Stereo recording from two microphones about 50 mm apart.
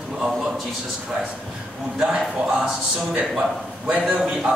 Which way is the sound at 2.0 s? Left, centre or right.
Centre.